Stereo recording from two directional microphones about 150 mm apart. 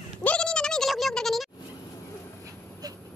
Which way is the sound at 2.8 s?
25° right (ahead or behind).